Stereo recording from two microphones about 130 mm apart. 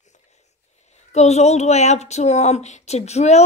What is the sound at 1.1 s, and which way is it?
Speech, 55° left (ahead or behind).